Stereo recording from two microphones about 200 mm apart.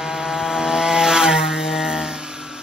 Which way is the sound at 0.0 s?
5° right (ahead or behind).